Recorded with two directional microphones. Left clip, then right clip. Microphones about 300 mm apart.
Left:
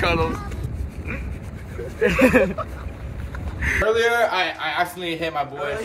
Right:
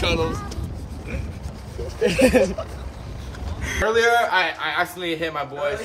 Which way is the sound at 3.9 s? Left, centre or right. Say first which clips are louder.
Right 1 dB; centre.